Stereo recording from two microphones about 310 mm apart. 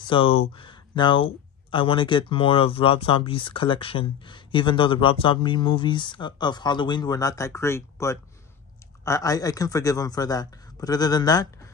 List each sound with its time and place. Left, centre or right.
0.1 s speech: centre